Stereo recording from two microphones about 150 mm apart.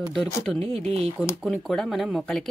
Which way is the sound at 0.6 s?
40° right (ahead or behind).